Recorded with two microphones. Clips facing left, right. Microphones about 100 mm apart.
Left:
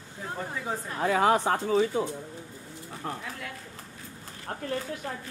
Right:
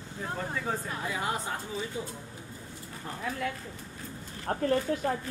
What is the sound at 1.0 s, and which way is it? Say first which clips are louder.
Speech: left 10 dB; 85° left.